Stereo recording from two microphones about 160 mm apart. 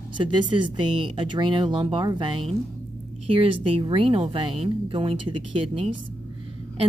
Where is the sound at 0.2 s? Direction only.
30° right (ahead or behind).